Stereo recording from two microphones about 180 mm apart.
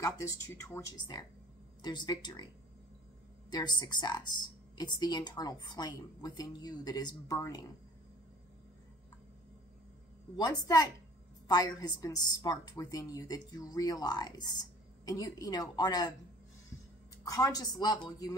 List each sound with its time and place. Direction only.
0.0 s speech: 15° left (ahead or behind)
3.4 s speech: 20° left (ahead or behind)
10.3 s speech: 20° left (ahead or behind)
17.2 s speech: 20° left (ahead or behind)